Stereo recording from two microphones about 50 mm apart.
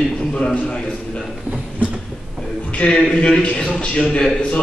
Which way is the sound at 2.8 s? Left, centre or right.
Centre.